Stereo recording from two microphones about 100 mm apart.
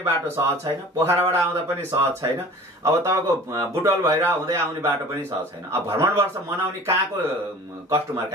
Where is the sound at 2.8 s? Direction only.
30° right (ahead or behind).